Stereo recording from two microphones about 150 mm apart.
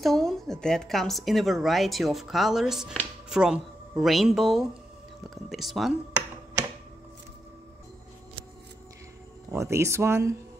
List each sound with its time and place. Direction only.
0.0 s speech: centre (ahead or behind)
9.5 s speech: 20° right (ahead or behind)